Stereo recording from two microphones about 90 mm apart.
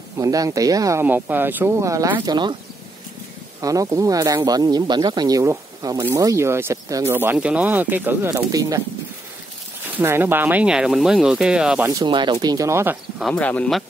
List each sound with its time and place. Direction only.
0.2 s speech: 40° right (ahead or behind)
1.0 s speech: 20° right (ahead or behind)
1.7 s speech: 35° right (ahead or behind)
2.2 s speech: 55° right (ahead or behind)
3.6 s speech: 40° right (ahead or behind)
7.3 s speech: 15° right (ahead or behind)
8.5 s speech: 40° right (ahead or behind)
9.9 s speech: 25° right (ahead or behind)
10.7 s speech: 5° right (ahead or behind)
12.1 s speech: 55° right (ahead or behind)
12.6 s speech: 30° right (ahead or behind)
13.3 s speech: 15° left (ahead or behind)